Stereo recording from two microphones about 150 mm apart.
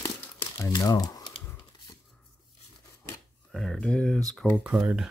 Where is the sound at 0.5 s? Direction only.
25° left (ahead or behind).